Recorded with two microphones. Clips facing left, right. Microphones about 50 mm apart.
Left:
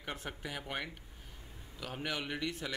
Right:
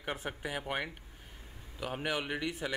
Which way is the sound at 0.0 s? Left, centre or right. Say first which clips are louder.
Right 4 dB; centre.